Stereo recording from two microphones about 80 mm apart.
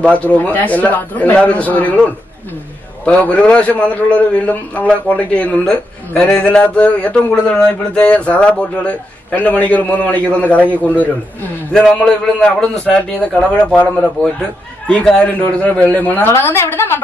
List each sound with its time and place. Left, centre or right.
0.0 s a woman's voice: centre
3.1 s a man's voice: centre
11.7 s a man's voice: centre; by 17.0 s left